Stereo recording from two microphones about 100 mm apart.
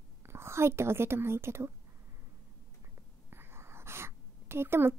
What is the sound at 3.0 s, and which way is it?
Writing, 25° right (ahead or behind).